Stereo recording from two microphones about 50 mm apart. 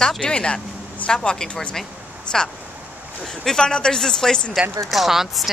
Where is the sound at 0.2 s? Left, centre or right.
Left.